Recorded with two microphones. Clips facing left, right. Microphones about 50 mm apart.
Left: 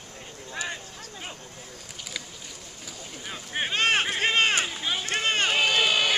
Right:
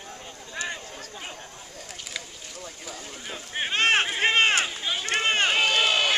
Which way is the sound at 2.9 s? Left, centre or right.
Centre.